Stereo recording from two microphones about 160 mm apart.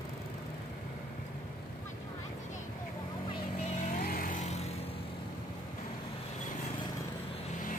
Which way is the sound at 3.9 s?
60° left (ahead or behind).